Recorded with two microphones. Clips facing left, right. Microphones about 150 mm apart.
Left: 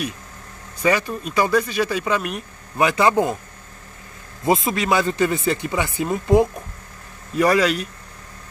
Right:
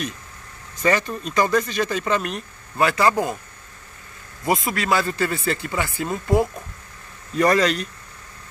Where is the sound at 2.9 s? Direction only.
20° left (ahead or behind).